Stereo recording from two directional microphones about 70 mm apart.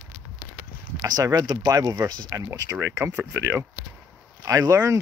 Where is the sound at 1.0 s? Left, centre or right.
Right.